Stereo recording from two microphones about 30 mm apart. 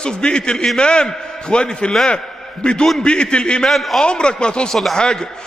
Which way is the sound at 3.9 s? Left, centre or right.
Left.